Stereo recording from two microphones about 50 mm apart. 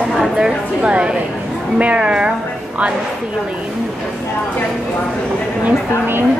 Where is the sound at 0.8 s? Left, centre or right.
Right.